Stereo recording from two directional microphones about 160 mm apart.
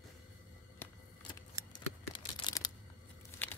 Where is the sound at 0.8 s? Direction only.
10° left (ahead or behind).